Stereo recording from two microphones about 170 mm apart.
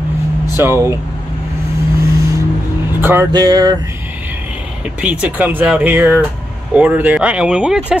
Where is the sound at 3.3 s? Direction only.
20° right (ahead or behind).